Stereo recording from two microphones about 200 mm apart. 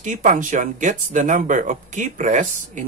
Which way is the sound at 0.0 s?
40° right (ahead or behind).